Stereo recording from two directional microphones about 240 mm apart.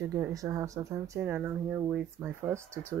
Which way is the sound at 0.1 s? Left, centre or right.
Centre.